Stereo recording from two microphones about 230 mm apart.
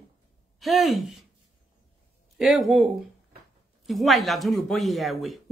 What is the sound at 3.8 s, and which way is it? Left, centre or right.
Speech, centre.